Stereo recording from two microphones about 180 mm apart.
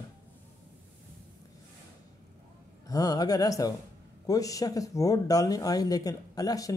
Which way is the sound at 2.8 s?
20° left (ahead or behind).